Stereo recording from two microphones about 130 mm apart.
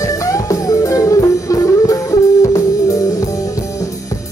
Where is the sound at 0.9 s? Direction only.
25° left (ahead or behind).